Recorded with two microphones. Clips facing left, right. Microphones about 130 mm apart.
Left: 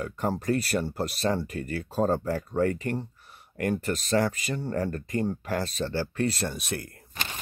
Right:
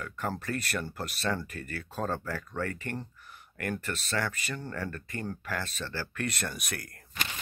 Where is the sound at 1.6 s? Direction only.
40° right (ahead or behind).